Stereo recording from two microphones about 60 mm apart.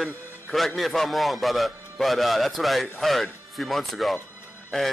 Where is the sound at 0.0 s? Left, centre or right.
Centre.